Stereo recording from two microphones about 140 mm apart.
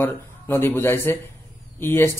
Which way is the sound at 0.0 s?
15° left (ahead or behind).